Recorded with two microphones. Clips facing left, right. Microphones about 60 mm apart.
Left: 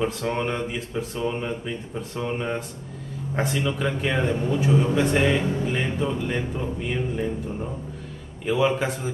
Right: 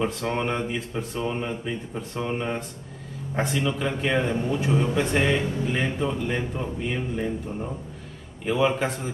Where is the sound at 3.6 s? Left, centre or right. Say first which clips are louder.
Even; centre.